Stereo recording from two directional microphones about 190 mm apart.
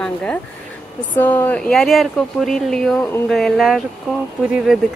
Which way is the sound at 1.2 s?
10° left (ahead or behind).